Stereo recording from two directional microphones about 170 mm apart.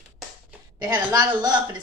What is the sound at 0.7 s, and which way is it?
Speech, 20° right (ahead or behind).